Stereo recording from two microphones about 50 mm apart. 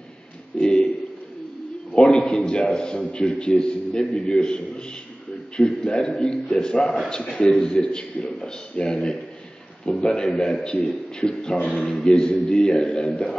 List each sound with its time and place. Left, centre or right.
0.6 s speech: left
2.0 s a man's voice: centre
5.6 s a man's voice: centre